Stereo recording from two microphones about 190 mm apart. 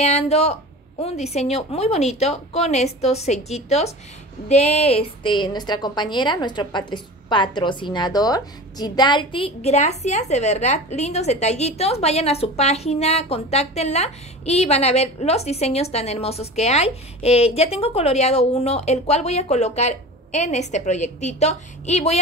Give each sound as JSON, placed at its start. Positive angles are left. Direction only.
{"t": 0.0, "sound": "a woman's voice", "side_deg": 35}